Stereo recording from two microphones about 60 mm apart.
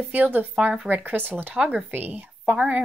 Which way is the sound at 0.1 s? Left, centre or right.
Right.